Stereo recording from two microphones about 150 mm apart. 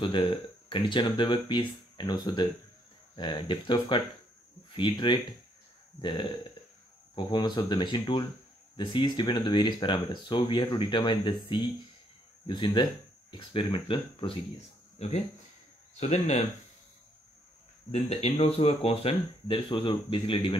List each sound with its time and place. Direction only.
0.0 s speech: 35° left (ahead or behind)
12.4 s speech: 30° left (ahead or behind)
16.0 s speech: 50° left (ahead or behind)
17.9 s speech: 45° left (ahead or behind)